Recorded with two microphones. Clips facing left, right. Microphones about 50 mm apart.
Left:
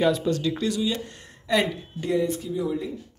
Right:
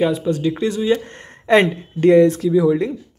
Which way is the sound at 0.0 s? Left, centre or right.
Centre.